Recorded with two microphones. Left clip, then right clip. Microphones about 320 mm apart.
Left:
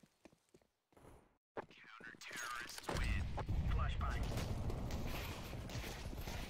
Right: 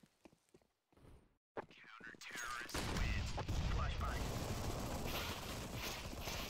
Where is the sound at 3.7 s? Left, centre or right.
Centre.